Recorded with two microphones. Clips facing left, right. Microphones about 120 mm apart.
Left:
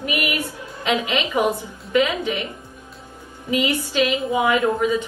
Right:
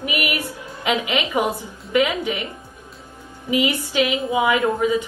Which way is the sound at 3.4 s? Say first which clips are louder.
Right 1 dB; 15° right (ahead or behind).